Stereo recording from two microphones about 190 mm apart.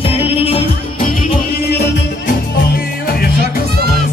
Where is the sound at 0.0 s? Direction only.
30° left (ahead or behind).